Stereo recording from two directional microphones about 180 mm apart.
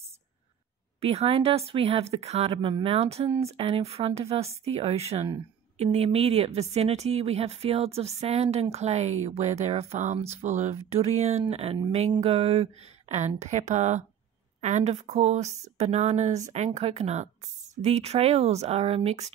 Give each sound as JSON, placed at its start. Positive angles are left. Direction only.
{"t": 1.0, "sound": "a woman's voice", "side_deg": -35}
{"t": 3.3, "sound": "speech", "side_deg": -15}
{"t": 3.5, "sound": "a woman's voice", "side_deg": -35}